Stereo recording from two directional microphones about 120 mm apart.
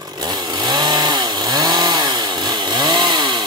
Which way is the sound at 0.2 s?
35° right (ahead or behind).